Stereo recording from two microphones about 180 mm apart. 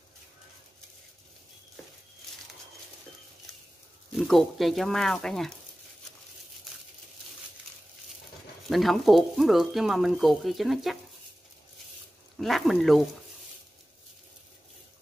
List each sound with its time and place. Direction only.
4.2 s speech: centre (ahead or behind)
8.6 s speech: centre (ahead or behind)
12.4 s speech: centre (ahead or behind)